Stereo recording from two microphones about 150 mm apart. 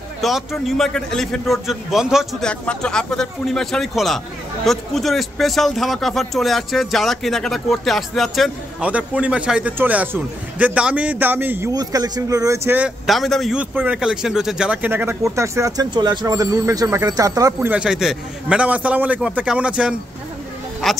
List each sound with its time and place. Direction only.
0.2 s a man's voice: centre (ahead or behind)
11.7 s speech: 25° right (ahead or behind)
17.6 s a man's voice: 10° right (ahead or behind)